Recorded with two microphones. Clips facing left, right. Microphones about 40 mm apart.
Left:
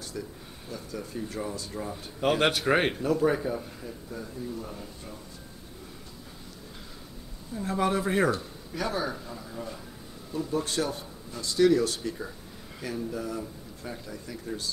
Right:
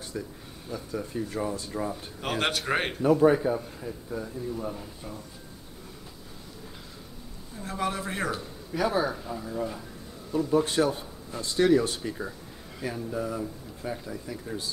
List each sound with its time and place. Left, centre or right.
0.7 s a man's voice: centre
2.1 s a man's voice: centre
3.0 s a man's voice: centre
7.5 s a man's voice: centre